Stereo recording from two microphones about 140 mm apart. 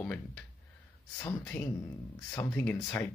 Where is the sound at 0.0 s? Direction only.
5° left (ahead or behind).